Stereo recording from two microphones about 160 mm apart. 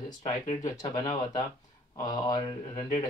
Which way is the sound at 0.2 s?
45° left (ahead or behind).